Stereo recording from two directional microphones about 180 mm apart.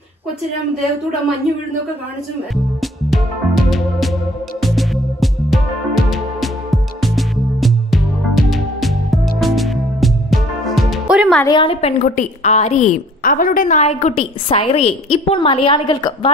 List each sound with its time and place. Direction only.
2.5 s music: centre (ahead or behind)
11.4 s a woman's voice: 25° left (ahead or behind)